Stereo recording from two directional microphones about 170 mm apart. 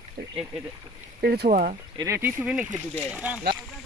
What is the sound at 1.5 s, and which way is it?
Speech, 50° right (ahead or behind).